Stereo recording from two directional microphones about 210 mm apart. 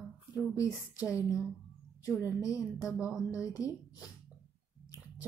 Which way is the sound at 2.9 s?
5° right (ahead or behind).